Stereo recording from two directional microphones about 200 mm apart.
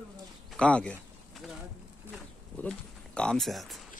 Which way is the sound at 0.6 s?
5° left (ahead or behind).